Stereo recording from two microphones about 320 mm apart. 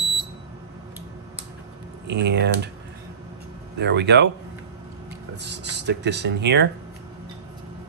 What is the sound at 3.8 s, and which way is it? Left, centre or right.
Speech, right.